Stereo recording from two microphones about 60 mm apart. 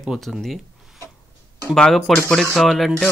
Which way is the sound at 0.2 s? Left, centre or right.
Centre.